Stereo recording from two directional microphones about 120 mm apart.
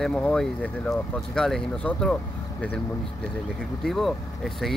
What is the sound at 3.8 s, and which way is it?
Speech, centre (ahead or behind).